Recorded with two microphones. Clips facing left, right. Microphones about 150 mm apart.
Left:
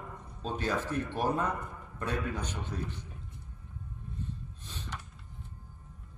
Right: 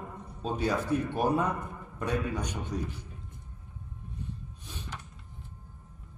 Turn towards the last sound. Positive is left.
turn(degrees=-10)  # may be behind; listen again after turning